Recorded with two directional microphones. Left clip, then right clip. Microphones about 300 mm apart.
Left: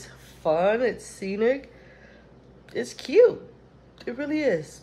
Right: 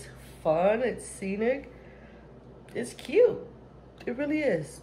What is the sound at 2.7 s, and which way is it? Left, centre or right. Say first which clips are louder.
Speech: left 4 dB; centre.